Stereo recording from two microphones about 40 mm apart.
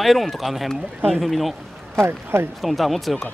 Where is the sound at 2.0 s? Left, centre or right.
Right.